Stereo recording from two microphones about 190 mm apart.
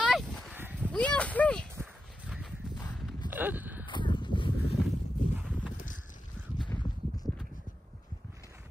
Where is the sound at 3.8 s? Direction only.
25° left (ahead or behind).